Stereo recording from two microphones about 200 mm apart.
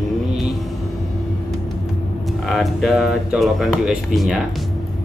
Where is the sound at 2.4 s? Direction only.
Centre (ahead or behind).